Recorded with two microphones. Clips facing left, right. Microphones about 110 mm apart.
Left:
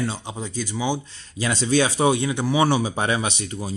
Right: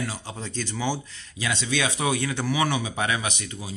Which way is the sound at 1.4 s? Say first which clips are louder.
Left 6 dB; 35° left (ahead or behind).